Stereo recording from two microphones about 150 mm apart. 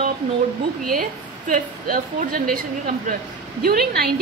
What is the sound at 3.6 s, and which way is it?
Speech, 90° right.